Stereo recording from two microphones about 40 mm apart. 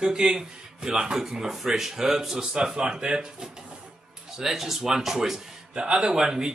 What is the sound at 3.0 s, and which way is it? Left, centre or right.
Speech, right.